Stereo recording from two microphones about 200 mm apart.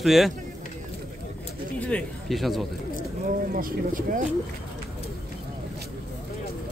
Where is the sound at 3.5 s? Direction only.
45° right (ahead or behind).